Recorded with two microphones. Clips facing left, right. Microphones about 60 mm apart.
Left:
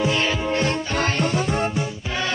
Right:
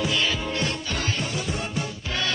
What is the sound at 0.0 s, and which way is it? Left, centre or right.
Music, left.